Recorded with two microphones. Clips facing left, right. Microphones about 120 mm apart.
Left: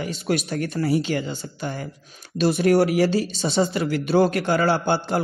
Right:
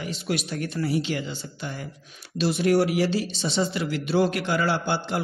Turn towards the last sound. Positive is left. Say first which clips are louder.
# left 4 dB
turn(degrees=35)  # may be behind; listen again after turning